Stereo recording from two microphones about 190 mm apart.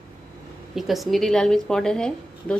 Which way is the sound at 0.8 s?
Centre (ahead or behind).